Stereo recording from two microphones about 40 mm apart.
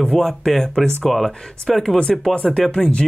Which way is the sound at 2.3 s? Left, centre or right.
Left.